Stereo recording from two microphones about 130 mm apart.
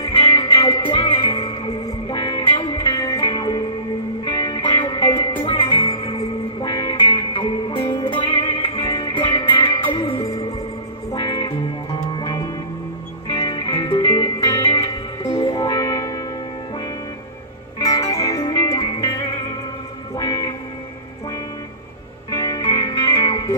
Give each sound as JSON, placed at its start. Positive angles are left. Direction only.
{"t": 0.1, "sound": "music", "side_deg": 40}
{"t": 10.2, "sound": "music", "side_deg": 25}
{"t": 17.7, "sound": "music", "side_deg": 30}
{"t": 18.5, "sound": "music", "side_deg": 35}
{"t": 20.2, "sound": "music", "side_deg": 30}
{"t": 22.3, "sound": "music", "side_deg": 30}